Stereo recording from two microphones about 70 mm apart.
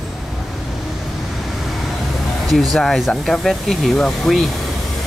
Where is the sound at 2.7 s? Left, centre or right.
Centre.